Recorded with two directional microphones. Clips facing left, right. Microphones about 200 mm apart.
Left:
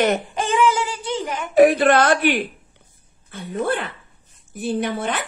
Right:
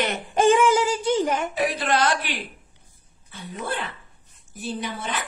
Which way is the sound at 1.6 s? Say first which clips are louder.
Left 14 dB; 55° left (ahead or behind).